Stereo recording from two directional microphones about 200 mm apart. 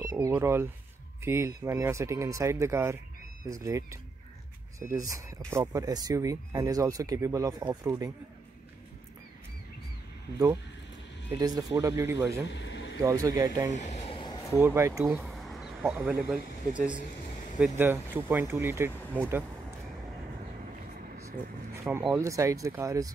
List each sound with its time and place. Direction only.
0.1 s speech: 15° right (ahead or behind)
11.3 s speech: 20° right (ahead or behind)
12.4 s a sound: 60° left (ahead or behind)
13.0 s speech: 15° right (ahead or behind)
13.7 s a sound: 35° left (ahead or behind)
14.5 s speech: 10° right (ahead or behind)
15.2 s a sound: centre (ahead or behind)
15.8 s speech: 10° right (ahead or behind)
21.9 s speech: 15° right (ahead or behind)